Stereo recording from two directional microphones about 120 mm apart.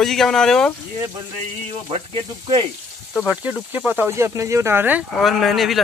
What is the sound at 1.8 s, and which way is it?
Speech, 50° right (ahead or behind).